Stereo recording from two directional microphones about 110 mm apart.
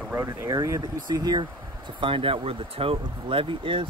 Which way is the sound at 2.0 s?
55° right (ahead or behind).